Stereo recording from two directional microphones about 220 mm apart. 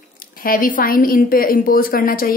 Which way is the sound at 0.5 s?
40° left (ahead or behind).